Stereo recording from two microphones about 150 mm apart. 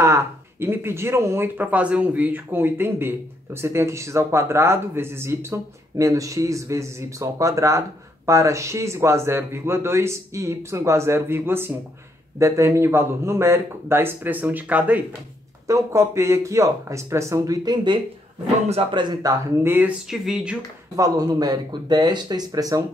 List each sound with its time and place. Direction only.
0.0 s speech: 15° right (ahead or behind)
15.6 s speech: 20° right (ahead or behind)
18.7 s speech: 35° right (ahead or behind); by 20.5 s 5° right (ahead or behind)
20.9 s speech: 25° right (ahead or behind)